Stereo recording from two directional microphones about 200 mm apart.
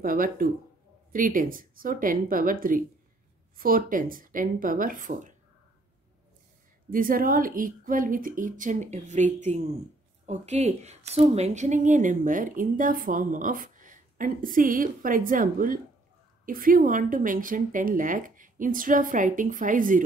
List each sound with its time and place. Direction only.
0.0 s a woman's voice: 45° right (ahead or behind)
6.9 s a woman's voice: 45° right (ahead or behind)